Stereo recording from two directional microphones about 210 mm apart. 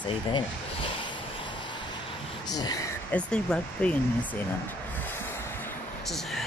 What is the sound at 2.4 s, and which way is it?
Speech, 20° left (ahead or behind).